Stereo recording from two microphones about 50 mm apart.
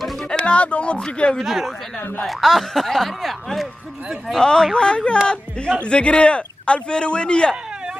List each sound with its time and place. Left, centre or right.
0.3 s a man's voice: left
1.4 s speech: centre
4.4 s a man's voice: centre